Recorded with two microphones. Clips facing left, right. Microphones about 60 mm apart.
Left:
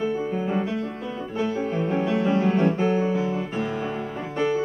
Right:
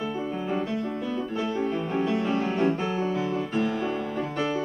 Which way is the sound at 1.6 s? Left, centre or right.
Centre.